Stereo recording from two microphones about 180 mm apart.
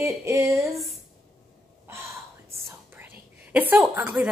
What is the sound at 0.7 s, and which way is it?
Speech, centre (ahead or behind).